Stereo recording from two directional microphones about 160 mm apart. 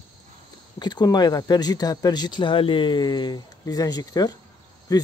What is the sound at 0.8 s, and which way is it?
Speech, 25° left (ahead or behind).